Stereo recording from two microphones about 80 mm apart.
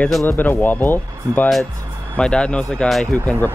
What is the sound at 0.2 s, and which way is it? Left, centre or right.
Speech, left.